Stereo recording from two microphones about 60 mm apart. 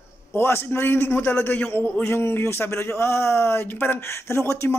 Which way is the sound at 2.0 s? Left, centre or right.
Left.